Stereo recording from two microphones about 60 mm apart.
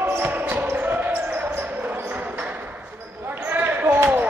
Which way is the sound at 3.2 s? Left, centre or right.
Right.